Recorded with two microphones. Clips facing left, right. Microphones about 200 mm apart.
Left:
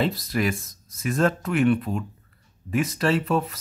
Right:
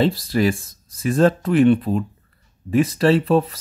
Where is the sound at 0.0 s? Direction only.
30° right (ahead or behind).